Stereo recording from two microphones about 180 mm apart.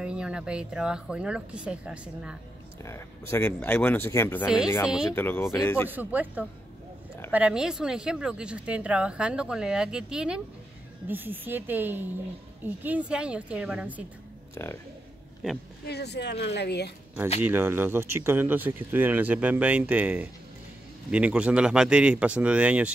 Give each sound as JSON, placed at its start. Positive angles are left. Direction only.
{"t": 0.0, "sound": "speech", "side_deg": -5}
{"t": 2.8, "sound": "speech", "side_deg": 15}
{"t": 4.8, "sound": "speech", "side_deg": -5}
{"t": 5.1, "sound": "speech", "side_deg": 10}
{"t": 5.9, "sound": "speech", "side_deg": -10}
{"t": 14.5, "sound": "speech", "side_deg": 15}
{"t": 15.8, "sound": "a woman's voice", "side_deg": 65}
{"t": 17.4, "sound": "speech", "side_deg": -10}